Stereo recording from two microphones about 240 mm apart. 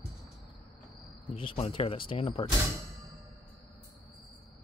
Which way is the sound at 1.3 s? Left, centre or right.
Left.